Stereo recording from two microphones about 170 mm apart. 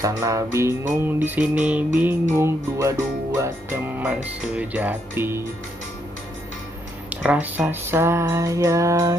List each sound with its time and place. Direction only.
0.0 s speech: 20° right (ahead or behind)
7.2 s speech: 10° right (ahead or behind)